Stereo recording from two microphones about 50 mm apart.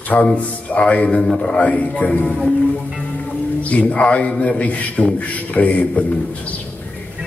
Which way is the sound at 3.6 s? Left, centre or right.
Left.